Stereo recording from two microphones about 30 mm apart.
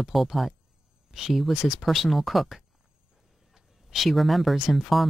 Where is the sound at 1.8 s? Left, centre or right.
Centre.